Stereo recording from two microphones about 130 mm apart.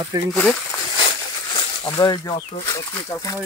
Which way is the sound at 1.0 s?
40° left (ahead or behind).